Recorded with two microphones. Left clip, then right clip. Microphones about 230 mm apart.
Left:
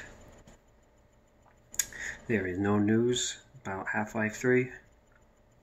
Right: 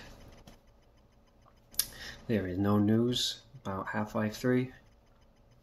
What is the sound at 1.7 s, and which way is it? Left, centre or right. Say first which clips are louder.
Speech: left 4 dB; centre.